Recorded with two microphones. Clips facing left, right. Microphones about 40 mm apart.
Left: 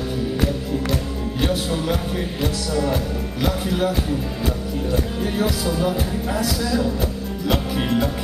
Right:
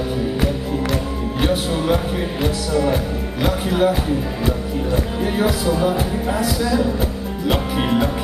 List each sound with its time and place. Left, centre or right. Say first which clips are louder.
1.4 s music: right 3 dB; centre
4.9 s music: right 2 dB; centre